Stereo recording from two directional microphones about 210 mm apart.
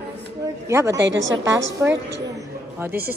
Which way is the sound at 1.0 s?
60° right (ahead or behind).